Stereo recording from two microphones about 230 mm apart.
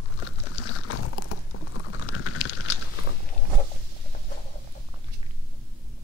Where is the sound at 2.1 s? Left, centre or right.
Left.